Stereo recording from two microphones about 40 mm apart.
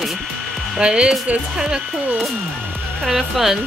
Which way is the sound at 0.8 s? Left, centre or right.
Right.